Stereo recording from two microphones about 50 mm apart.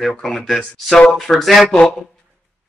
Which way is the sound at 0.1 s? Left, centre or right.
Centre.